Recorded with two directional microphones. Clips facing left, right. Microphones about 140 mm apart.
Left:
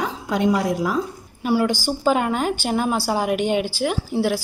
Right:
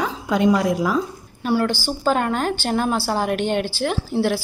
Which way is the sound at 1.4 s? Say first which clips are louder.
Left 1 dB; 10° left (ahead or behind).